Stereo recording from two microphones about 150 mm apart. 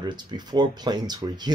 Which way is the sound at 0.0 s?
30° right (ahead or behind).